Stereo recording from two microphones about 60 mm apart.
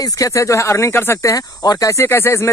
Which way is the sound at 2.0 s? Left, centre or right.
Left.